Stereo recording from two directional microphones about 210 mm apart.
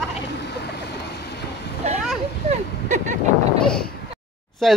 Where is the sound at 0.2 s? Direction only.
55° left (ahead or behind).